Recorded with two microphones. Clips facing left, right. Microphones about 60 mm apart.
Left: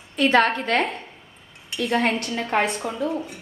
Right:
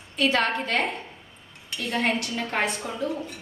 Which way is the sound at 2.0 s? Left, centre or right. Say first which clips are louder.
Left 2 dB; left.